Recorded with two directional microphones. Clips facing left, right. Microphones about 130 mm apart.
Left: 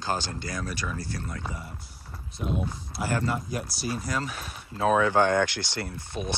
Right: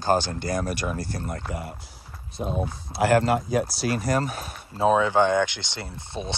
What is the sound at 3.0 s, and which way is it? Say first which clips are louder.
Speech: right 9 dB; 75° right (ahead or behind).